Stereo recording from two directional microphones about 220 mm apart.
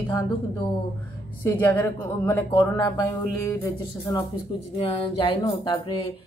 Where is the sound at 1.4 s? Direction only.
15° left (ahead or behind).